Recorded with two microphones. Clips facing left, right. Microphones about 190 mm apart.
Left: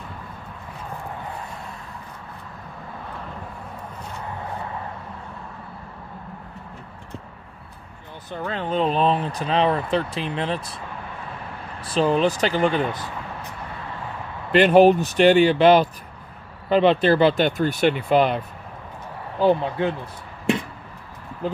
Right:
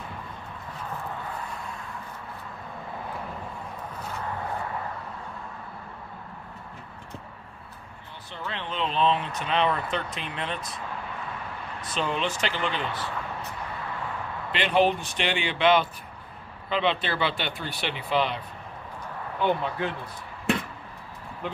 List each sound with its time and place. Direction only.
8.3 s speech: 45° left (ahead or behind)
11.8 s speech: 35° left (ahead or behind)
12.9 s a sound: 15° left (ahead or behind)
14.5 s speech: 45° left (ahead or behind)
19.4 s speech: 30° left (ahead or behind)